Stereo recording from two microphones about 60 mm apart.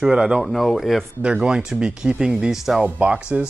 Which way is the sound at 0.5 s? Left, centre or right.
Centre.